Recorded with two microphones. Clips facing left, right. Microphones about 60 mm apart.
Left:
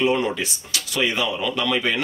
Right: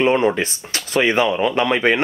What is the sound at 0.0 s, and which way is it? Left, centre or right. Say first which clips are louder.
Speech: right 5 dB; right.